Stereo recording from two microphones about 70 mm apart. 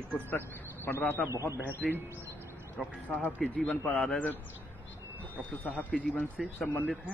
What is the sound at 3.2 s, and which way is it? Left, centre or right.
Speech, left.